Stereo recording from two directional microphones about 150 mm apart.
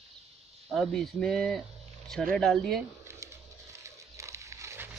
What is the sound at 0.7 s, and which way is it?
Speech, centre (ahead or behind).